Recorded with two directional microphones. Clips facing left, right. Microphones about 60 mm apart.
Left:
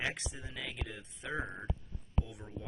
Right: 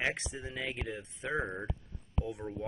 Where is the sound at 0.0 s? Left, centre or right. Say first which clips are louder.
Right 4 dB; right.